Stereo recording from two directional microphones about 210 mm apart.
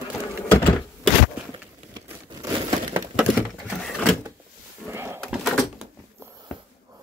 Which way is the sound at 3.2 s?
Centre (ahead or behind).